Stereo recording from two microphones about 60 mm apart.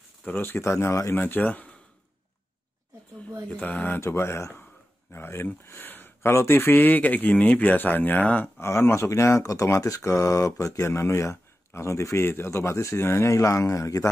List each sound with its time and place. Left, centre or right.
0.3 s speech: left
0.6 s speech: left
1.1 s speech: left
3.4 s speech: left
4.0 s speech: left
8.5 s speech: left
9.4 s speech: left
10.1 s speech: left